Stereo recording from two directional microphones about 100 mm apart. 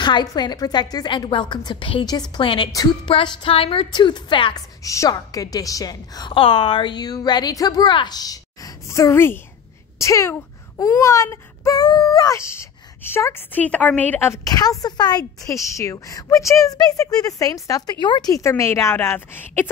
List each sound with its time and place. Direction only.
0.0 s a woman's voice: 50° left (ahead or behind)
4.6 s a woman's voice: 30° left (ahead or behind)
6.3 s a woman's voice: 65° left (ahead or behind); by 14.4 s 20° left (ahead or behind)
14.4 s a woman's voice: 40° left (ahead or behind)
15.4 s a woman's voice: 30° left (ahead or behind)
18.0 s a woman's voice: 50° left (ahead or behind)
18.3 s speech: 30° left (ahead or behind)